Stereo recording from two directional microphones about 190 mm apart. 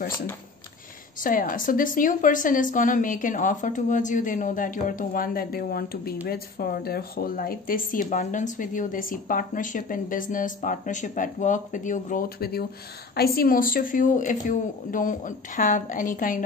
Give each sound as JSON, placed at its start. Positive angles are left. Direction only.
{"t": 1.2, "sound": "speech", "side_deg": 45}